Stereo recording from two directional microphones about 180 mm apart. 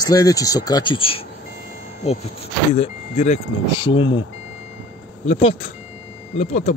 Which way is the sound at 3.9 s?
90° left.